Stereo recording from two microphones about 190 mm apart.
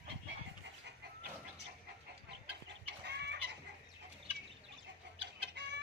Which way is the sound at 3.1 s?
65° right (ahead or behind).